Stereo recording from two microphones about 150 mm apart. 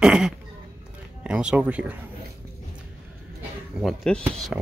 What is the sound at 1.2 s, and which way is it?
Speech, 5° right (ahead or behind).